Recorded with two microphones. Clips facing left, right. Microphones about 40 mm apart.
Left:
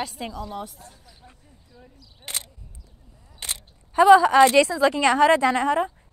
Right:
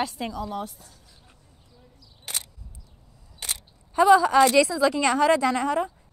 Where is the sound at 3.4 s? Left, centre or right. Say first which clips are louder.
Left 1 dB; centre.